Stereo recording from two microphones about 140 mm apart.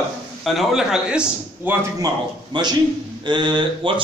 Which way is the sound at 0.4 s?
Centre (ahead or behind).